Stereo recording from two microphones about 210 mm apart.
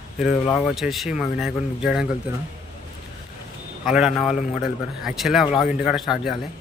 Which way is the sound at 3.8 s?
Centre (ahead or behind).